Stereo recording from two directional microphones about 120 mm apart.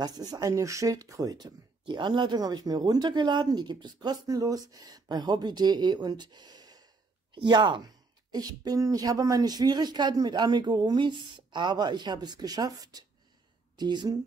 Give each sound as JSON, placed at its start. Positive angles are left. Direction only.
{"t": 0.0, "sound": "speech", "side_deg": -30}